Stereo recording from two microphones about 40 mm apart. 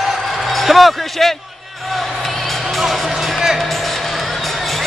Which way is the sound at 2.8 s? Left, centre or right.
Centre.